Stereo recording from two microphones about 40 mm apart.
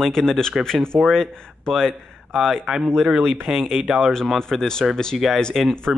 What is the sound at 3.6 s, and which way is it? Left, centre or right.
Speech, centre.